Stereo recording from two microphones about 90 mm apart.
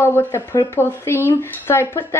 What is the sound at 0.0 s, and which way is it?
Speech, 25° left (ahead or behind).